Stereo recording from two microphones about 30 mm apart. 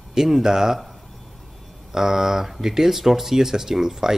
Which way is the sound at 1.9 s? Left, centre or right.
Centre.